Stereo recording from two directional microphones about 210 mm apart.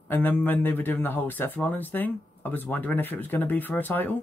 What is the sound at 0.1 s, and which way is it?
Speech, 10° left (ahead or behind).